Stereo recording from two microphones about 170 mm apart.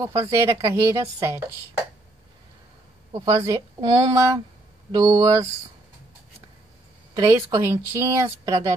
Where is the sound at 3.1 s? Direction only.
30° right (ahead or behind).